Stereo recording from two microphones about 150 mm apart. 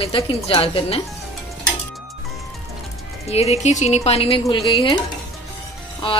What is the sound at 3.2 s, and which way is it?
Speech, 45° left (ahead or behind).